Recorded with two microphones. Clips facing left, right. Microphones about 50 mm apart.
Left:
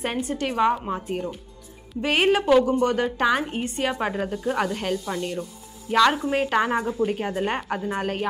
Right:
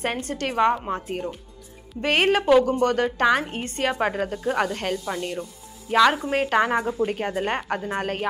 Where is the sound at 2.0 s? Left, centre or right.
Right.